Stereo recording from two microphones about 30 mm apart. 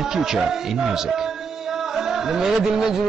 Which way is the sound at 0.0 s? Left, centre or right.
Centre.